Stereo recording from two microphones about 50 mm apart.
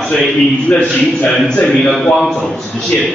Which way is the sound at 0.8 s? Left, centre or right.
Left.